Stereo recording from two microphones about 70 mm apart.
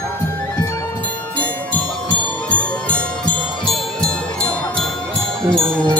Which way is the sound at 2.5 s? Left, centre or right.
Centre.